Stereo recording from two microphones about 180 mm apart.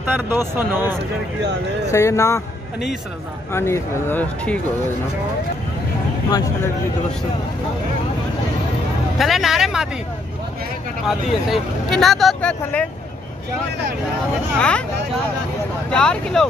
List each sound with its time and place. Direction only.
0.0 s speech: 10° right (ahead or behind)
1.9 s speech: 15° left (ahead or behind)
3.5 s speech: 15° left (ahead or behind)
9.2 s speech: centre (ahead or behind)
11.1 s speech: centre (ahead or behind)
14.6 s speech: 5° left (ahead or behind)
15.9 s speech: 5° left (ahead or behind)